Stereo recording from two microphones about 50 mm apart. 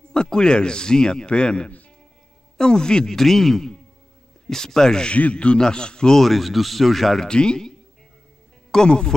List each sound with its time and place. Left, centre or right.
0.1 s a man's voice: centre
5.1 s a man's voice: left; by 7.2 s centre
7.2 s a man's voice: centre
8.7 s a man's voice: centre